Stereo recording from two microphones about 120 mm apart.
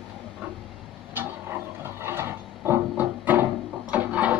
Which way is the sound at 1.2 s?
20° right (ahead or behind).